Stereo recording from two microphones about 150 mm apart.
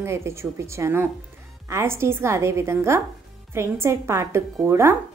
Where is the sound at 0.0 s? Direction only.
20° right (ahead or behind).